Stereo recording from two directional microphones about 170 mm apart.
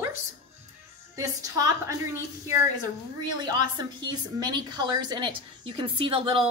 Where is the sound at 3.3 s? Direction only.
25° right (ahead or behind).